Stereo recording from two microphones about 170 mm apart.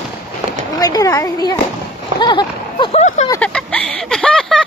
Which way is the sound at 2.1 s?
25° left (ahead or behind).